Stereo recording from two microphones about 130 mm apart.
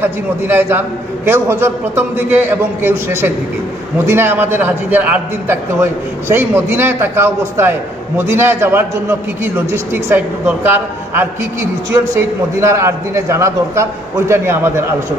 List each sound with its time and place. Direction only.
0.0 s a man's voice: 15° right (ahead or behind)